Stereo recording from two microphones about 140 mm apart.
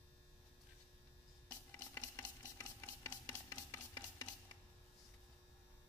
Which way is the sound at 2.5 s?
20° left (ahead or behind).